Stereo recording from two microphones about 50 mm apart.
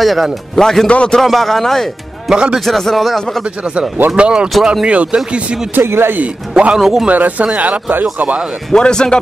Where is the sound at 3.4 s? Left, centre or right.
Right.